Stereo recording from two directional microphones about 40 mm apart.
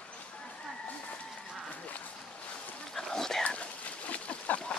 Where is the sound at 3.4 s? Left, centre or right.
Left.